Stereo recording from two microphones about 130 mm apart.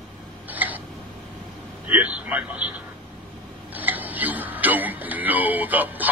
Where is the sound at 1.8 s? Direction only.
10° right (ahead or behind).